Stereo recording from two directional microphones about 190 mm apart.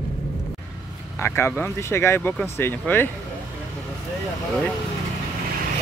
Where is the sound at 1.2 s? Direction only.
10° left (ahead or behind).